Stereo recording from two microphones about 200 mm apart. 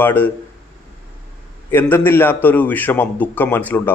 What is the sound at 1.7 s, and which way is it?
A man's voice, 10° left (ahead or behind).